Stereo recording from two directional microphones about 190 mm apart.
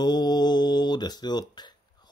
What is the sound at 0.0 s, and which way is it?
Mantra, 20° left (ahead or behind).